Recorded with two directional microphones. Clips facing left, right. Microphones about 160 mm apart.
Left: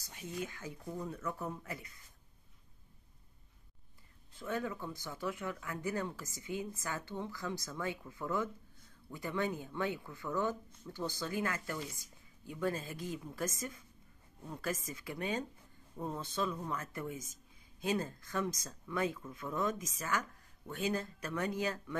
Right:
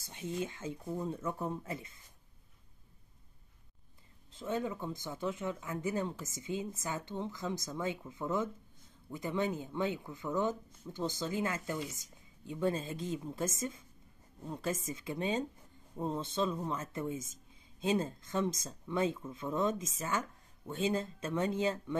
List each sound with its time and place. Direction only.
0.0 s speech: 25° right (ahead or behind)
4.3 s speech: 20° right (ahead or behind)